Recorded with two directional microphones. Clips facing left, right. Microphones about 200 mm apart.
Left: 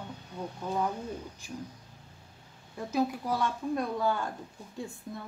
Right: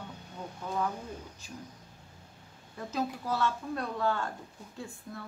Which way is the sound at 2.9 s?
10° left (ahead or behind).